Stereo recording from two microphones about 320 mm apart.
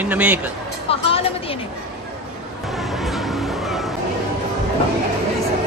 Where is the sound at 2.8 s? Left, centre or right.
Centre.